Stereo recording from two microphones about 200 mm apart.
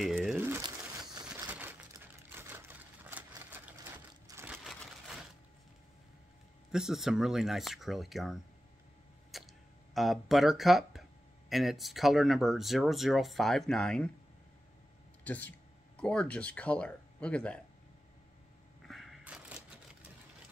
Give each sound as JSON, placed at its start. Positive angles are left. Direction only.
{"t": 0.0, "sound": "crumpling", "side_deg": 0}
{"t": 0.4, "sound": "crumpling", "side_deg": -10}
{"t": 1.5, "sound": "a sound", "side_deg": -10}
{"t": 2.2, "sound": "typewriter", "side_deg": -10}
{"t": 4.5, "sound": "a sound", "side_deg": 0}
{"t": 6.7, "sound": "speech", "side_deg": 0}
{"t": 9.3, "sound": "tick-tock", "side_deg": 0}
{"t": 9.9, "sound": "speech", "side_deg": 0}
{"t": 15.2, "sound": "speech", "side_deg": 5}
{"t": 18.9, "sound": "a sound", "side_deg": 0}